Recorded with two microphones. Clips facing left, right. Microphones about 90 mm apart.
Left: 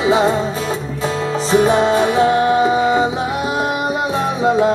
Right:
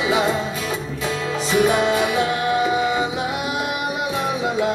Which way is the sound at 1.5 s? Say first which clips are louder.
Left 4 dB; 30° left (ahead or behind).